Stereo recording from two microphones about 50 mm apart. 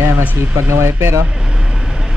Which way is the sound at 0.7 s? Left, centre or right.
Right.